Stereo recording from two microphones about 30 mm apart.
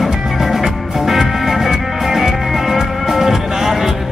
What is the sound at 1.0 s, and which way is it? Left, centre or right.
Music, centre.